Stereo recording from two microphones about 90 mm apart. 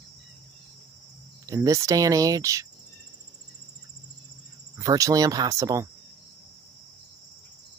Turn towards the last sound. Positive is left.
turn(degrees=-40)  # may be behind; listen again after turning